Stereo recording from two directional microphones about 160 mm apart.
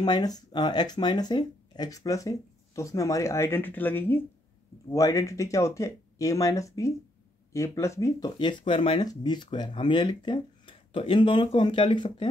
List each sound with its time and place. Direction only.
0.0 s speech: 25° left (ahead or behind)